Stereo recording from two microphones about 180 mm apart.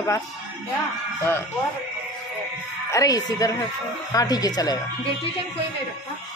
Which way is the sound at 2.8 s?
20° left (ahead or behind).